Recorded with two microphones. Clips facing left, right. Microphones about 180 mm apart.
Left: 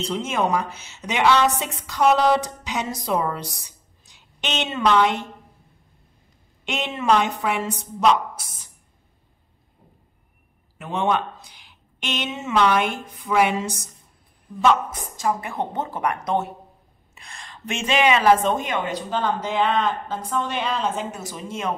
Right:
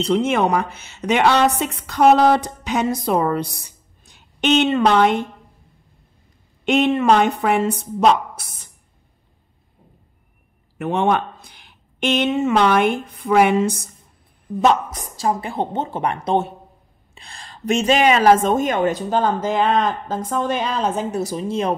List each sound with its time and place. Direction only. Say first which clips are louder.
0.0 s speech: right 6 dB; 60° right (ahead or behind)
6.6 s speech: right 11 dB; 55° right (ahead or behind)
10.8 s speech: right 4 dB; 55° right (ahead or behind)
14.6 s a woman's voice: right 2 dB; 40° right (ahead or behind)